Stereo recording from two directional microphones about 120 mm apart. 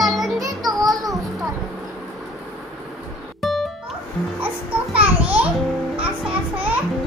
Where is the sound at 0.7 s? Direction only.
30° right (ahead or behind).